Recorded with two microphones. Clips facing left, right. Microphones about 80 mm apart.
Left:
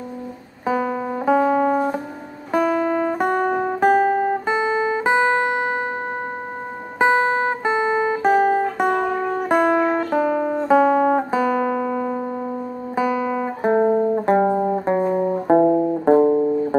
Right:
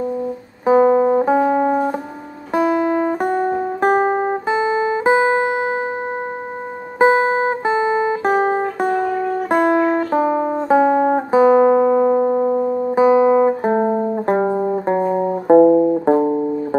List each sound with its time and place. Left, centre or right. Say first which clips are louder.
0.7 s music: right 10 dB; right
3.3 s music: right 1 dB; left
3.8 s music: even; right
4.5 s guitar: right 2 dB; centre
7.0 s music: right 3 dB; right
8.2 s music: even; right
9.9 s music: right 2 dB; centre
13.6 s music: even; centre